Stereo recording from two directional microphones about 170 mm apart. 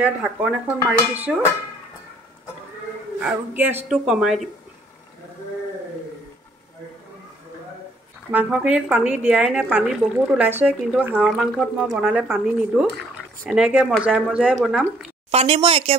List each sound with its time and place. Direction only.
0.0 s speech: 5° right (ahead or behind)
3.2 s speech: 5° right (ahead or behind)
8.3 s speech: 10° right (ahead or behind)
15.3 s speech: 35° right (ahead or behind)